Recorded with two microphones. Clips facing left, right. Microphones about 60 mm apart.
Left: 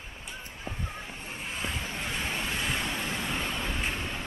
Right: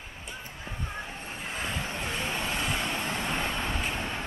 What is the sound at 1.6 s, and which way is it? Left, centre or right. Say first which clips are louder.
Vehicle: right 2 dB; right.